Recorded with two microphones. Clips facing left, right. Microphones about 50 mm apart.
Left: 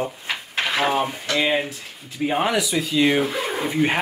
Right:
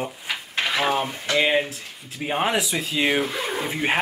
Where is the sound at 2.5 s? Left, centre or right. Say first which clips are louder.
Left 3 dB; centre.